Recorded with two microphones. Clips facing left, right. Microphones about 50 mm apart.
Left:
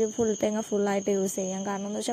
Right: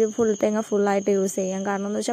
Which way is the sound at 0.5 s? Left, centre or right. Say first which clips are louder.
Right 5 dB; right.